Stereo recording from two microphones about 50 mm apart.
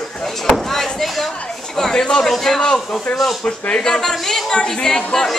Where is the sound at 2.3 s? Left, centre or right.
Centre.